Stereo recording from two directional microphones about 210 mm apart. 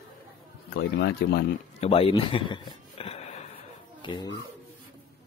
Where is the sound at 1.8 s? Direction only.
25° left (ahead or behind).